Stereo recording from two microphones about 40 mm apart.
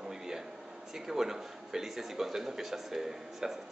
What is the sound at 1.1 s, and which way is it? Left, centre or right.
A man's voice, centre.